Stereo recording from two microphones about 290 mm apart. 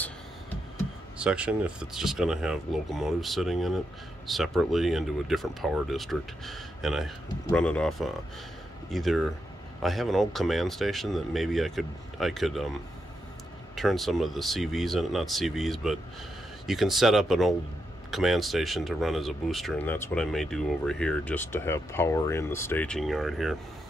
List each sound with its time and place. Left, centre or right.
1.1 s speech: centre
13.7 s speech: centre